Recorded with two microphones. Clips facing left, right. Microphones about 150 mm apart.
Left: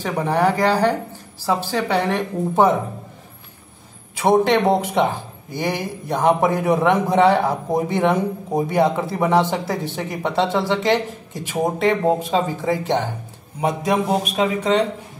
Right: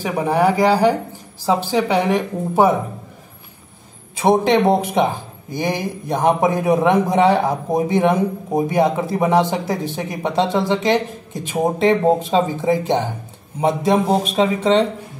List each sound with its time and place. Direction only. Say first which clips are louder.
0.0 s a man's voice: right 2 dB; 10° right (ahead or behind)
4.2 s a man's voice: right 1 dB; 20° right (ahead or behind)